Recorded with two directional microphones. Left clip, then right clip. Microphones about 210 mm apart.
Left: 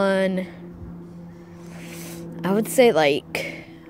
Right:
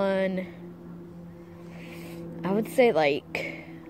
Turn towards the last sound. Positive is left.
turn(degrees=15)  # may be behind; listen again after turning